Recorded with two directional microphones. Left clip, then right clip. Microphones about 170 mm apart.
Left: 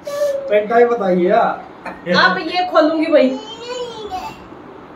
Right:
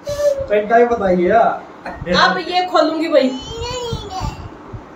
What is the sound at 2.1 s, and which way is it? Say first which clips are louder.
A woman's voice: even; 15° right (ahead or behind).